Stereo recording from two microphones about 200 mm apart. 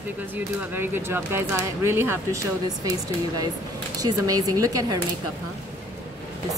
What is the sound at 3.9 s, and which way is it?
Speech, 20° right (ahead or behind).